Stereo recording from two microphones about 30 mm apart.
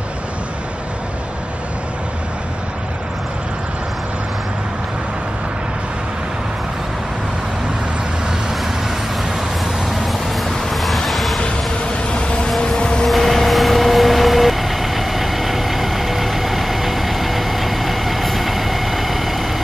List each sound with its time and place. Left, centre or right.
9.8 s vehicle: centre
10.7 s a sound: centre
12.4 s vehicle: centre
12.7 s vehicle: left
13.0 s vehicle: centre